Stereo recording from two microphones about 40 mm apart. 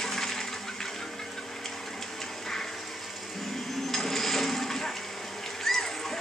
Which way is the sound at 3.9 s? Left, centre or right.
Centre.